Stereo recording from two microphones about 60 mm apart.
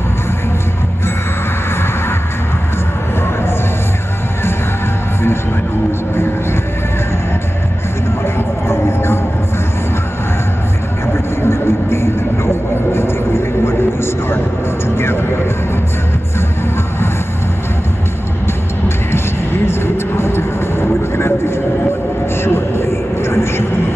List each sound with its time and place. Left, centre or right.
8.6 s a sound: left
11.4 s vehicle: left
15.0 s music: left
19.1 s vehicle: left